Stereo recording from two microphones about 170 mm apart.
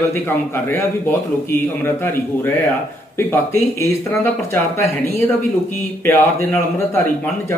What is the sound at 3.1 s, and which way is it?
Speech, 15° left (ahead or behind).